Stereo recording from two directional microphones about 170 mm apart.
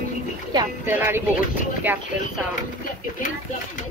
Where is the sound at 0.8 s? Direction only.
15° right (ahead or behind).